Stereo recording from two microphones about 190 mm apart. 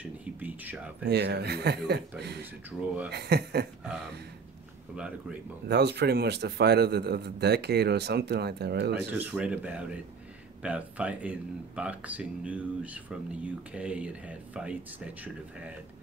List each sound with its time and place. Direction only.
0.2 s a sound: 10° right (ahead or behind)
1.0 s a man's voice: 60° right (ahead or behind)
5.7 s a man's voice: 60° right (ahead or behind)
9.2 s speech: 5° right (ahead or behind)